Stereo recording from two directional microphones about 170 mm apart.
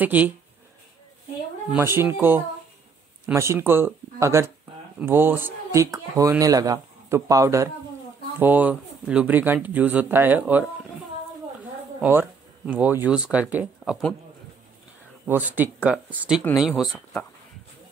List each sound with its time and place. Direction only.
0.0 s speech: 10° right (ahead or behind)
1.7 s speech: 15° right (ahead or behind)
12.0 s speech: 10° right (ahead or behind)
15.2 s speech: 10° right (ahead or behind)